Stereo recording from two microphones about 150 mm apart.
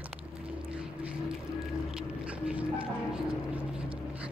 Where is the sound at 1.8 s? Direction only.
5° right (ahead or behind).